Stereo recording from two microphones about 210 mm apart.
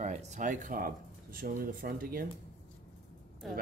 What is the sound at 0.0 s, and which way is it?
Speech, 35° right (ahead or behind).